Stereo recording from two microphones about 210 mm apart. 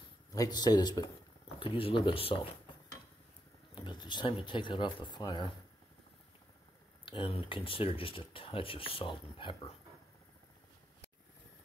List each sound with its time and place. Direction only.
0.3 s speech: 20° left (ahead or behind)
3.7 s speech: 20° left (ahead or behind)
7.1 s speech: 25° left (ahead or behind)